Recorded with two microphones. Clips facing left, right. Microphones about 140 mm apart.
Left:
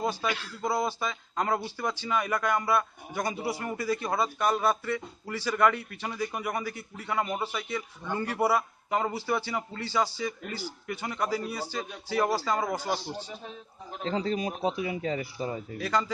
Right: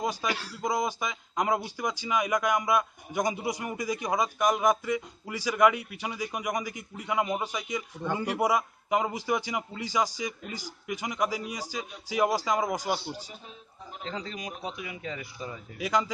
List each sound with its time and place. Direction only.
0.0 s speech: 15° right (ahead or behind)
0.3 s speech: 35° right (ahead or behind)
0.6 s a man's voice: 15° right (ahead or behind)
14.0 s a man's voice: 35° left (ahead or behind)
15.8 s a man's voice: 10° right (ahead or behind)